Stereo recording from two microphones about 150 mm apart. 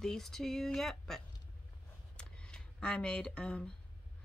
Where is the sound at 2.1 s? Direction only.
5° left (ahead or behind).